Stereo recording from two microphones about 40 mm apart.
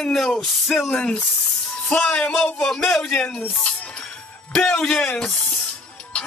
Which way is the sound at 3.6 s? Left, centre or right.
Left.